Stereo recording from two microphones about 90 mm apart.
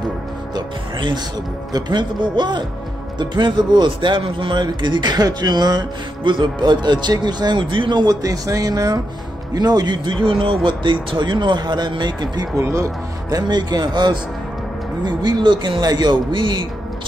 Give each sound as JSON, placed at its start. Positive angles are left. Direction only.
{"t": 0.6, "sound": "speech", "side_deg": -55}
{"t": 12.6, "sound": "speech", "side_deg": -35}
{"t": 13.4, "sound": "speech", "side_deg": -50}